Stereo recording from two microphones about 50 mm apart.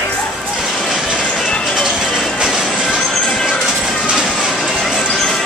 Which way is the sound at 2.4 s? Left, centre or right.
Centre.